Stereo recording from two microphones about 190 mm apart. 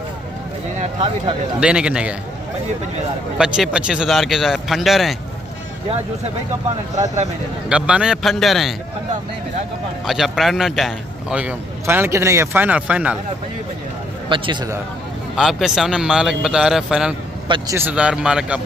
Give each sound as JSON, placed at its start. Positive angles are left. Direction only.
{"t": 1.6, "sound": "a man's voice", "side_deg": -5}
{"t": 3.3, "sound": "a man's voice", "side_deg": -5}
{"t": 7.7, "sound": "a man's voice", "side_deg": -5}
{"t": 10.0, "sound": "a man's voice", "side_deg": 0}
{"t": 14.3, "sound": "a man's voice", "side_deg": -25}
{"t": 15.3, "sound": "a man's voice", "side_deg": 0}
{"t": 17.5, "sound": "a man's voice", "side_deg": -15}